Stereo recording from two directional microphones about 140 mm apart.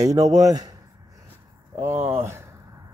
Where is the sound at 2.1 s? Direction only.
20° right (ahead or behind).